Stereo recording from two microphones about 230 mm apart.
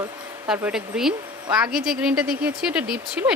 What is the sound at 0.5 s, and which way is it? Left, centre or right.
A woman's voice, centre.